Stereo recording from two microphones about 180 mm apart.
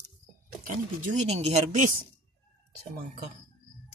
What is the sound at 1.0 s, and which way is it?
Speech, 40° right (ahead or behind).